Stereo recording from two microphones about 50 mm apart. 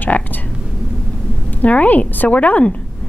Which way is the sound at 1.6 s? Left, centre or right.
Left.